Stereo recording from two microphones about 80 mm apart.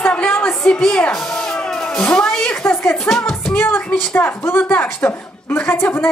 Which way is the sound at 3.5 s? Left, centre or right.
Left.